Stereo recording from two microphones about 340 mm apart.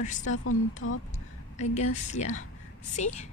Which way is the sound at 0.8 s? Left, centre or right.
Left.